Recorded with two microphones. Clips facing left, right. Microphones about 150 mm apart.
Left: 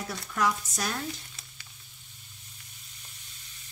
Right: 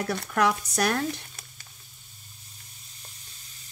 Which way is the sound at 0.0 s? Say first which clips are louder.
Right 5 dB; 65° right (ahead or behind).